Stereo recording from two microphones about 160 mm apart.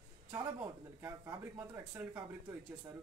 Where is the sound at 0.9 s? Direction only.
15° right (ahead or behind).